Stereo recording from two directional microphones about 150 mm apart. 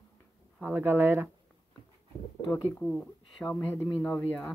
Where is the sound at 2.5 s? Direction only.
15° left (ahead or behind).